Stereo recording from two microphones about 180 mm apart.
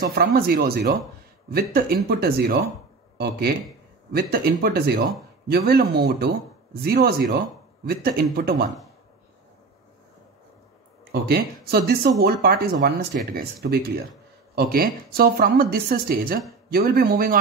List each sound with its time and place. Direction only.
0.0 s speech: 55° right (ahead or behind)
11.1 s speech: 60° right (ahead or behind)